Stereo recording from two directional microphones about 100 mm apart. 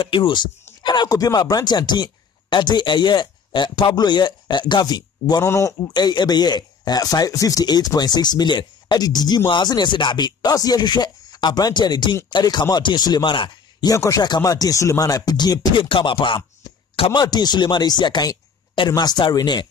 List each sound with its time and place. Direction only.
0.0 s speech: 50° left (ahead or behind)
5.5 s a man's voice: 30° left (ahead or behind)
5.9 s speech: 45° left (ahead or behind)
13.8 s speech: 30° left (ahead or behind); by 16.4 s 55° left (ahead or behind)
17.1 s speech: 45° left (ahead or behind)